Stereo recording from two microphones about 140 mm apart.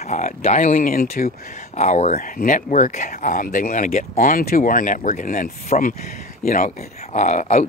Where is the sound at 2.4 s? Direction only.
70° left (ahead or behind).